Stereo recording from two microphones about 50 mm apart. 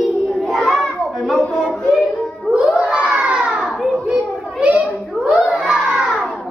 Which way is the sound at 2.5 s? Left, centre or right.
Right.